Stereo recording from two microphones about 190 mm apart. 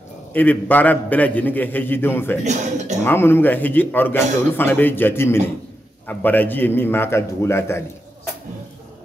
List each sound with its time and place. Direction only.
0.3 s a man's voice: 10° left (ahead or behind)
2.4 s a man's voice: 40° right (ahead or behind)
3.0 s a man's voice: 10° left (ahead or behind)